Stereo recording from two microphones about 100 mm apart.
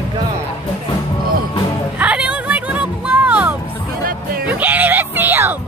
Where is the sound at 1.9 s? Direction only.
15° right (ahead or behind).